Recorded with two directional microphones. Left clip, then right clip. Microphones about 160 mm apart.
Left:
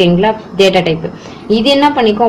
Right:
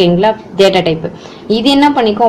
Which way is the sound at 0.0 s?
35° right (ahead or behind).